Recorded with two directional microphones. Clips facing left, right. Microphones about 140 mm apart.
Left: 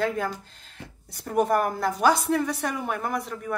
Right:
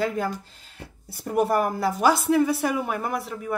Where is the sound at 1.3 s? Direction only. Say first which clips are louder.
Right 1 dB; 5° right (ahead or behind).